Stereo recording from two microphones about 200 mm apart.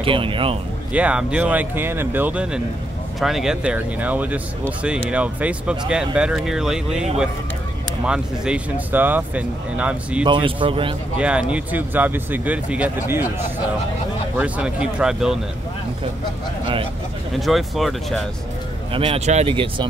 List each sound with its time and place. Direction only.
0.0 s speech: 25° right (ahead or behind)
0.9 s speech: 5° right (ahead or behind)
10.2 s speech: 25° right (ahead or behind)
11.1 s speech: 5° right (ahead or behind)
14.3 s speech: 5° right (ahead or behind)
17.4 s speech: centre (ahead or behind)
18.9 s speech: 25° right (ahead or behind)